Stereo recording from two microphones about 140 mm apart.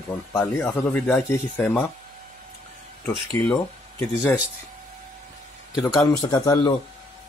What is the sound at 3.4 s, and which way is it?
Speech, 20° left (ahead or behind).